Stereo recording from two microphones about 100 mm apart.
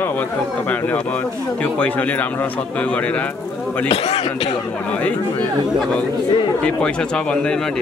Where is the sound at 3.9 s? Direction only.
85° left.